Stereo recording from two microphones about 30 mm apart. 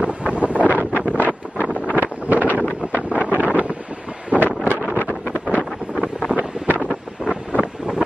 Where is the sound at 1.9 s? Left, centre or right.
Right.